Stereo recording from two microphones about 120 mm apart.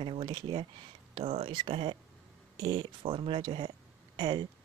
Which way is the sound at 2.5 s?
30° right (ahead or behind).